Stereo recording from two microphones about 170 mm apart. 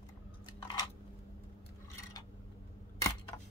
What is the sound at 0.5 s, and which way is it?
Chewing, 25° left (ahead or behind).